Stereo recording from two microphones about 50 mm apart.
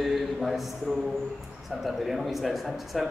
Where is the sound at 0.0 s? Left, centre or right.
Centre.